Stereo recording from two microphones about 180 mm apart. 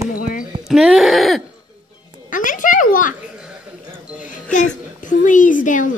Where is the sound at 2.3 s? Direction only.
45° left (ahead or behind).